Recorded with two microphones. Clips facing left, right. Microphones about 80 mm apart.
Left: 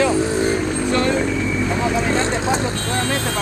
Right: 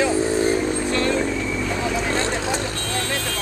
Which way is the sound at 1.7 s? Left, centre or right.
Left.